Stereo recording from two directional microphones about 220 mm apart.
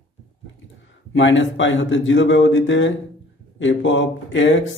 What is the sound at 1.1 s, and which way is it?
Speech, 55° left (ahead or behind).